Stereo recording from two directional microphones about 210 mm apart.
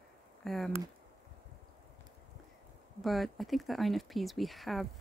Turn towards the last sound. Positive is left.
turn(degrees=0)  # may be behind; listen again after turning